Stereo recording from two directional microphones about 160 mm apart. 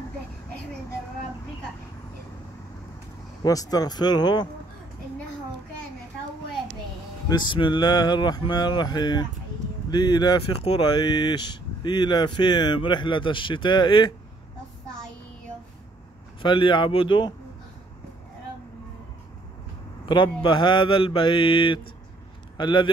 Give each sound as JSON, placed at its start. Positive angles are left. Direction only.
{"t": 3.4, "sound": "speech", "side_deg": 25}
{"t": 7.2, "sound": "speech", "side_deg": 30}
{"t": 16.4, "sound": "mantra", "side_deg": 30}
{"t": 20.1, "sound": "mantra", "side_deg": 30}
{"t": 22.6, "sound": "speech", "side_deg": 30}